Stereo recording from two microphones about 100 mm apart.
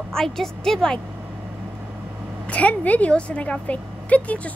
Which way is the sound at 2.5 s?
15° left (ahead or behind).